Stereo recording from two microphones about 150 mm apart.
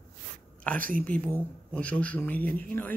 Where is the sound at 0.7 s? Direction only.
65° right (ahead or behind).